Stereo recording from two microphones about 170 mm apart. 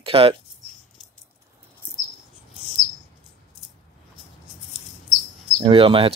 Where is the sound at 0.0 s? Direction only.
30° right (ahead or behind).